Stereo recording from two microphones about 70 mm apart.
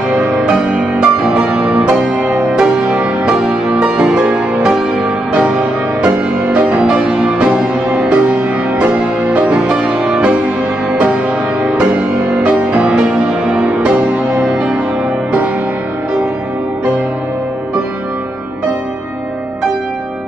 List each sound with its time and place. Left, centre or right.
0.1 s music: centre